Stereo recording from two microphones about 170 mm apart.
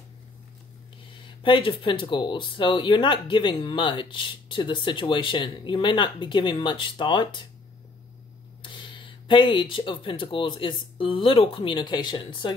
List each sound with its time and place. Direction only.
1.2 s speech: 30° left (ahead or behind)
8.6 s speech: 25° left (ahead or behind)